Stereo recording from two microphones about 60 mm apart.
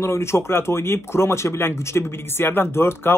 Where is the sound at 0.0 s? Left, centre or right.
Left.